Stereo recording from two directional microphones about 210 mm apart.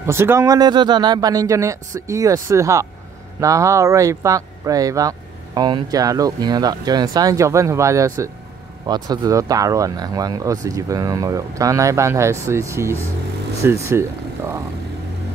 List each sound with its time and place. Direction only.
0.0 s speech: 10° right (ahead or behind)